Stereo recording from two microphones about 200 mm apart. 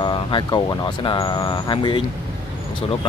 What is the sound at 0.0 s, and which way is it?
Speech, 25° left (ahead or behind).